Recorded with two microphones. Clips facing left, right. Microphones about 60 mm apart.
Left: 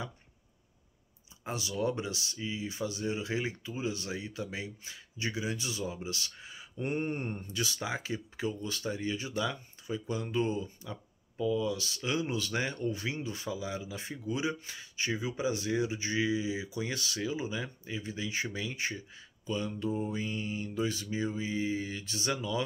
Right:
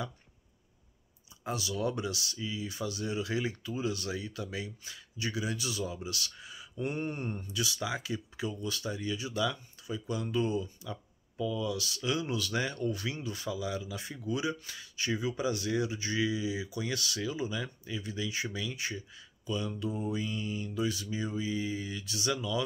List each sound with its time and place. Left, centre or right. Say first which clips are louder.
1.4 s speech: even; left
19.8 s mantra: left 1 dB; left